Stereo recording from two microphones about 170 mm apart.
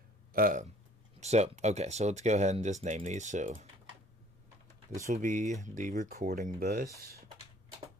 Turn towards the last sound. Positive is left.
turn(degrees=-65)  # may be behind; listen again after turning